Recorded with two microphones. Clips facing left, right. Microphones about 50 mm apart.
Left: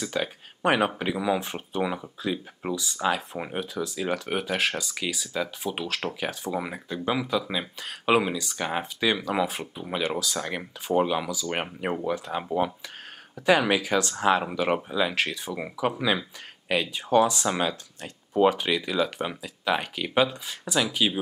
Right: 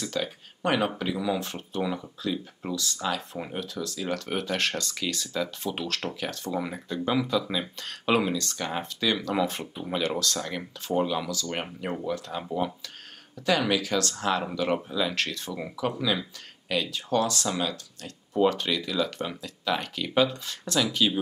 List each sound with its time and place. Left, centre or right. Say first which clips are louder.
0.0 s speech: left 2 dB; centre